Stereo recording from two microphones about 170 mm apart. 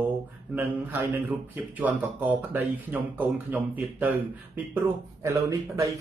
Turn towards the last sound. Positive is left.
turn(degrees=-15)  # may be behind; listen again after turning